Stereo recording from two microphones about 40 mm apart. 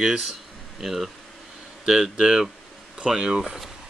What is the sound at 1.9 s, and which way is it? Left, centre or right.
Speech, centre.